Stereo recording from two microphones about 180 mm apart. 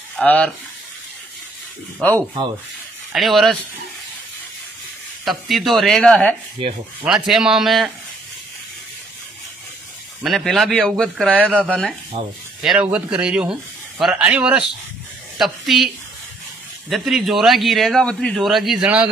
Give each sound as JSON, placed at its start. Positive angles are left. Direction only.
{"t": 0.1, "sound": "speech", "side_deg": 5}
{"t": 2.1, "sound": "speech", "side_deg": -25}
{"t": 3.1, "sound": "speech", "side_deg": 0}
{"t": 5.2, "sound": "speech", "side_deg": 0}
{"t": 6.6, "sound": "speech", "side_deg": -30}
{"t": 7.1, "sound": "speech", "side_deg": 0}
{"t": 10.2, "sound": "speech", "side_deg": 0}
{"t": 12.1, "sound": "speech", "side_deg": -30}
{"t": 12.6, "sound": "speech", "side_deg": -5}
{"t": 16.9, "sound": "speech", "side_deg": 0}